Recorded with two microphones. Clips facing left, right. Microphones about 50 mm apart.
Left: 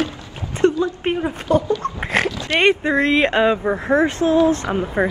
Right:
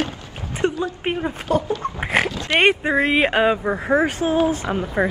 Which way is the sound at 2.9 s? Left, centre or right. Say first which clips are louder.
Left 1 dB; centre.